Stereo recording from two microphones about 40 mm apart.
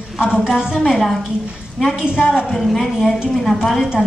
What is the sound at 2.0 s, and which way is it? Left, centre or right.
Speech, centre.